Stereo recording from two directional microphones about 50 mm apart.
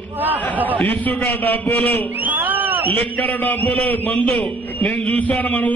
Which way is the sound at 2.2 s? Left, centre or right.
Right.